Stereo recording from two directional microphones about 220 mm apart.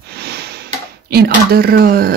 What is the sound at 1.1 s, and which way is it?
Speech, 45° right (ahead or behind).